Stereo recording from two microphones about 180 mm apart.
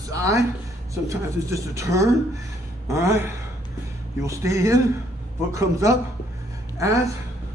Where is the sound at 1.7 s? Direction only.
15° right (ahead or behind).